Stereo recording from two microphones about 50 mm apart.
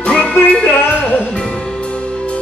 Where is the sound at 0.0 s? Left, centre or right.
Left.